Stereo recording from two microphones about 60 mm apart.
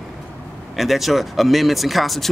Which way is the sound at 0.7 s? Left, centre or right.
Centre.